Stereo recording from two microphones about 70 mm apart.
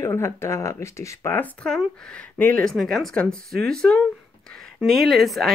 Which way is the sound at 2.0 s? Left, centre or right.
Centre.